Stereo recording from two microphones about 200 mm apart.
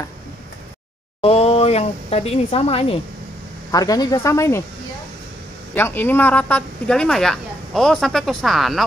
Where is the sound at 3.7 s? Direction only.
20° left (ahead or behind).